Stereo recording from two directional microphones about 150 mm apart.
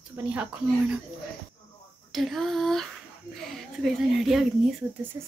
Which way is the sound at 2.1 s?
Centre (ahead or behind).